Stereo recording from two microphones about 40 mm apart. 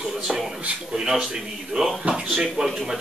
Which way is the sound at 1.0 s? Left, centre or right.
Centre.